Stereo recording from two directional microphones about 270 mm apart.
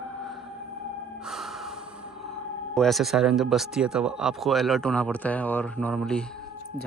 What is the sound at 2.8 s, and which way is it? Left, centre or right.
Speech, centre.